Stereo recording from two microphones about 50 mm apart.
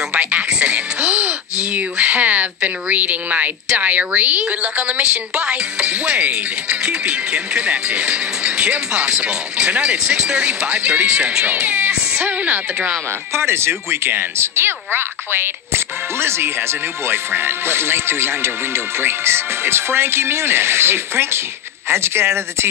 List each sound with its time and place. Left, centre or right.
0.1 s music: right
3.7 s a woman's voice: right
11.5 s speech: right
13.3 s speech: right